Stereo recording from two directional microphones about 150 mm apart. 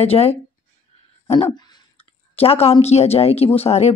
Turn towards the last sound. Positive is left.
turn(degrees=45)  # may be behind; listen again after turning